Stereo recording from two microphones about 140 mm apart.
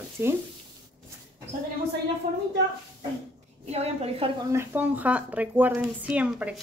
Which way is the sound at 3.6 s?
50° right (ahead or behind).